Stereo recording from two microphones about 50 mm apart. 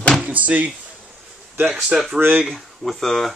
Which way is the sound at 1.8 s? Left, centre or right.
Centre.